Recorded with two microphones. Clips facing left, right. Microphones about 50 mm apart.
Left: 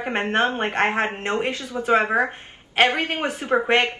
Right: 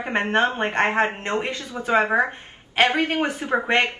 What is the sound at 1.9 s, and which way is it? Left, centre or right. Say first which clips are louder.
Speech: right 1 dB; right.